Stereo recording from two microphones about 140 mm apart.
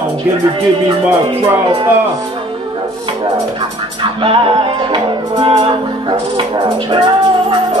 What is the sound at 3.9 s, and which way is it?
Music, 40° right (ahead or behind).